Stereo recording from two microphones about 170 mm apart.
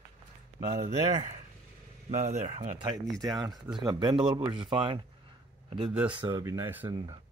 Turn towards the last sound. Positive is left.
turn(degrees=-25)  # may be behind; listen again after turning